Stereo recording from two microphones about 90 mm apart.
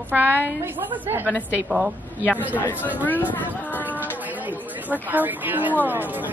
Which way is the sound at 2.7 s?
20° right (ahead or behind).